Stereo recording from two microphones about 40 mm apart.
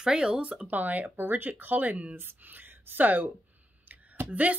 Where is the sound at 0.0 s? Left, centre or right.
Right.